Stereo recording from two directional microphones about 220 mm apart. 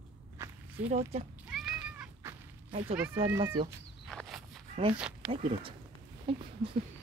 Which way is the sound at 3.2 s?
10° right (ahead or behind).